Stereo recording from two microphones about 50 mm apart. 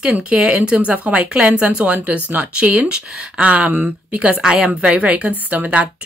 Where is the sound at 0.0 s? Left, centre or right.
Right.